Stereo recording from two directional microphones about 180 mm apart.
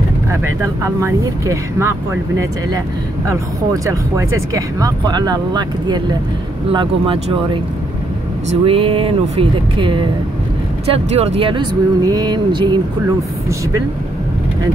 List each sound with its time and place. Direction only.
0.8 s speech: 15° right (ahead or behind)
8.5 s speech: 30° right (ahead or behind)